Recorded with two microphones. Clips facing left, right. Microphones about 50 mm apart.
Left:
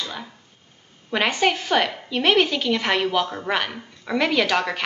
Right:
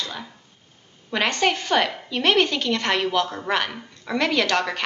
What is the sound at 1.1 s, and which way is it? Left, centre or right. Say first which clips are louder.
A woman's voice: left 1 dB; centre.